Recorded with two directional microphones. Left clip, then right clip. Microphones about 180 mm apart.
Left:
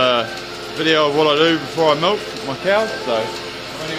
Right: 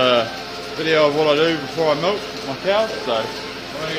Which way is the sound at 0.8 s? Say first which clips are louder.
Left 1 dB; 40° left (ahead or behind).